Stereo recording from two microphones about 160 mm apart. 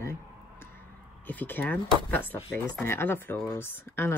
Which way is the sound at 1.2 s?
10° left (ahead or behind).